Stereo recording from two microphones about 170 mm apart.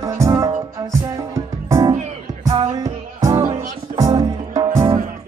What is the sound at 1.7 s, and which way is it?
Music, 20° right (ahead or behind).